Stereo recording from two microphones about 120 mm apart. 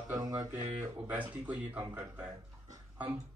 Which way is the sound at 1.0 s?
15° right (ahead or behind).